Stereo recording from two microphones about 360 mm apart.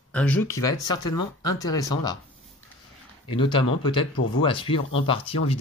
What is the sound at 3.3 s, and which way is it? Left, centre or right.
Speech, centre.